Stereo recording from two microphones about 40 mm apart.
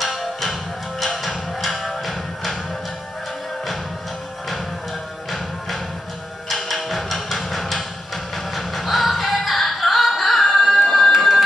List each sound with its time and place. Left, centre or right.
0.0 s music: centre
6.5 s music: centre
11.1 s a sound: centre